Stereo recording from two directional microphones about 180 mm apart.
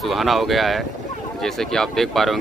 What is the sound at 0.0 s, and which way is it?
Speech, centre (ahead or behind).